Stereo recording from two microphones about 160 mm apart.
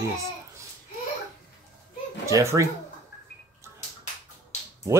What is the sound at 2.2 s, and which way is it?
Speech, 20° right (ahead or behind).